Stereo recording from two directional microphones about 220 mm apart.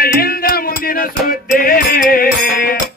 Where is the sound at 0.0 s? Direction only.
45° left (ahead or behind).